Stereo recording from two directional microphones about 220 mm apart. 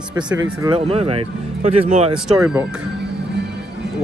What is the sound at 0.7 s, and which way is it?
Speech, 25° right (ahead or behind).